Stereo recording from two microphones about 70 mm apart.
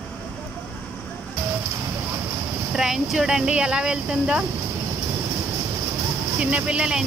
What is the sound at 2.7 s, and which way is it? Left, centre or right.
Speech, centre.